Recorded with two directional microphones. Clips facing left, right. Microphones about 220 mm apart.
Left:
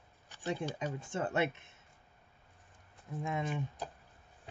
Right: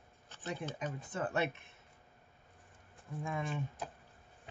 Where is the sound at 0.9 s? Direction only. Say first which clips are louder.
Left 2 dB; 25° left (ahead or behind).